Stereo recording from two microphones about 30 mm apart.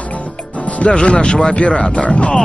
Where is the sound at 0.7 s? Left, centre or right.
Left.